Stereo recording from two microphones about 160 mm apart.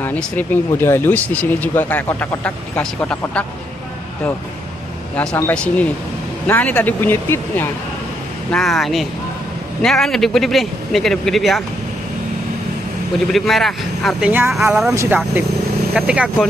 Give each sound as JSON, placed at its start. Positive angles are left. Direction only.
{"t": 0.0, "sound": "speech", "side_deg": 10}
{"t": 5.1, "sound": "speech", "side_deg": 5}
{"t": 8.5, "sound": "a man's voice", "side_deg": 5}
{"t": 13.3, "sound": "a man's voice", "side_deg": 0}